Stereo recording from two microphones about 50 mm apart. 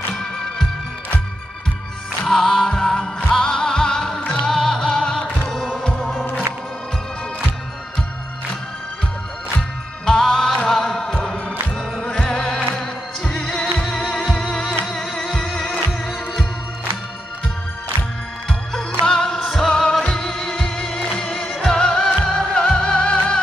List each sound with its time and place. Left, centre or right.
0.1 s music: centre
2.2 s music: centre
5.9 s music: centre
9.6 s music: centre
19.0 s music: centre